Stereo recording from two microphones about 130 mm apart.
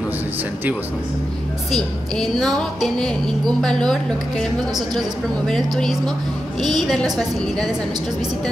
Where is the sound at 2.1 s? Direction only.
Centre (ahead or behind).